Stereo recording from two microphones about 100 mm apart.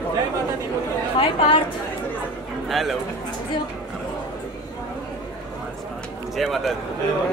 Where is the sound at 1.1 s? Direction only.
60° left (ahead or behind).